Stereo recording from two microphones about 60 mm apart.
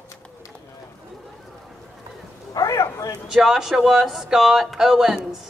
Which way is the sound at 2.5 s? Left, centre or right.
Left.